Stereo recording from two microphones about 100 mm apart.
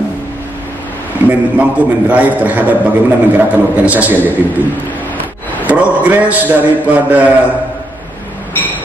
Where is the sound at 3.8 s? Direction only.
15° right (ahead or behind).